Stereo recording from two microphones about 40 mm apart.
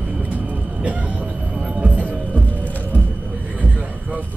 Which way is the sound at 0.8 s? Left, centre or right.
Right.